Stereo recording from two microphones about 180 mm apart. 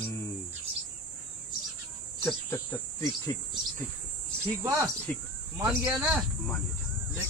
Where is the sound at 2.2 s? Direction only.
15° left (ahead or behind).